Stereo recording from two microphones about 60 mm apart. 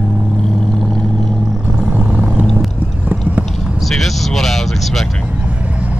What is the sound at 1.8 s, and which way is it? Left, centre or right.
Vehicle, right.